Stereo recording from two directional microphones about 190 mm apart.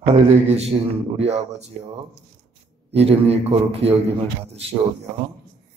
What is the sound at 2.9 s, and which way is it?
A man's voice, 30° right (ahead or behind).